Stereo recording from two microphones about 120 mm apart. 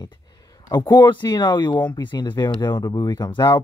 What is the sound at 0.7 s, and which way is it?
Speech, 35° left (ahead or behind).